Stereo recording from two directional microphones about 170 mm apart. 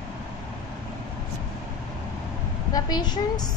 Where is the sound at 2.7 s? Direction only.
25° left (ahead or behind).